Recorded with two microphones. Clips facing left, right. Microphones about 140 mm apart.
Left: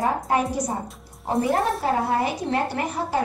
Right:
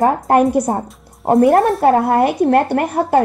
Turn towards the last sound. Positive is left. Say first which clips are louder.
# right 10 dB
turn(degrees=-60)  # may be behind; listen again after turning